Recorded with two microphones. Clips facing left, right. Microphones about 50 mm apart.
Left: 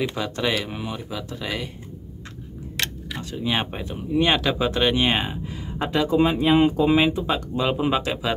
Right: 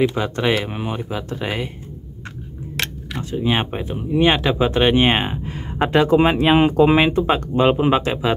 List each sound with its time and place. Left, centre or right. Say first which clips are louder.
0.1 s speech: right 5 dB; right
2.8 s speech: right 3 dB; right
7.7 s speech: right 5 dB; right